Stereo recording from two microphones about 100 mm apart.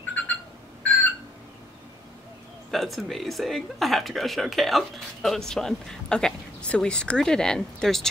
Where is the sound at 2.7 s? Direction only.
Centre (ahead or behind).